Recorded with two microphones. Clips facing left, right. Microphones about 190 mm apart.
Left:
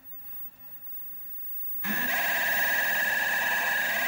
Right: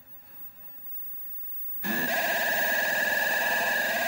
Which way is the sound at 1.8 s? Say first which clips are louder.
Right 5 dB; 40° right (ahead or behind).